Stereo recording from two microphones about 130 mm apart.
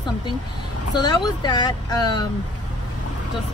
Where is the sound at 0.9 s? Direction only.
35° left (ahead or behind).